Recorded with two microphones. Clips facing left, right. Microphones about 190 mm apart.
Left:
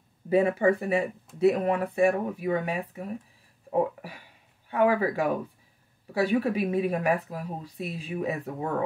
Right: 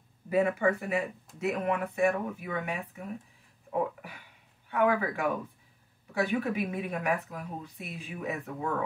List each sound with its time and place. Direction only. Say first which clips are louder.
0.3 s speech: left 4 dB; 30° left (ahead or behind)
6.4 s speech: left 6 dB; 30° left (ahead or behind)